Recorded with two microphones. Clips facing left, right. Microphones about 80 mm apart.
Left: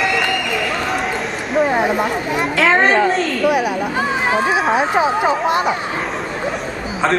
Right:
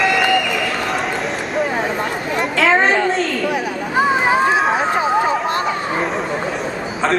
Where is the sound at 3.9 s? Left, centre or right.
Centre.